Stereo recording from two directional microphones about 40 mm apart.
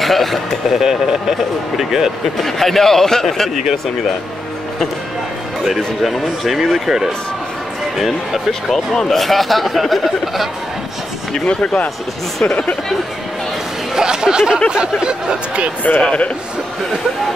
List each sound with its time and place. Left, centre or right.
0.0 s speech: centre
0.7 s speech: centre
2.4 s a man's voice: centre
6.0 s speech: centre
8.5 s speech: centre
11.3 s speech: left
13.9 s speech: centre
16.0 s speech: left